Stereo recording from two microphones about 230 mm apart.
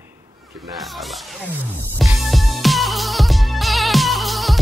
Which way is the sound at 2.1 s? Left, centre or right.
Centre.